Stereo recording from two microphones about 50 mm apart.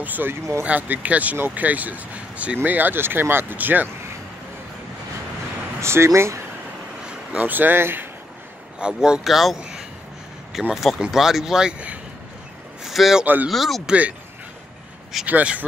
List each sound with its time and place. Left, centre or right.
0.0 s speech: right
3.5 s speech: right
5.8 s speech: right
7.3 s speech: right
8.7 s speech: centre
9.2 s speech: centre
9.6 s a sound: centre
10.7 s speech: centre
12.8 s speech: centre
13.2 s speech: right
13.5 s speech: centre
15.2 s speech: right